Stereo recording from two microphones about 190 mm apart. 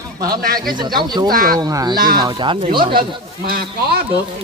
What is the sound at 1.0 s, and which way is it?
Speech, 20° right (ahead or behind).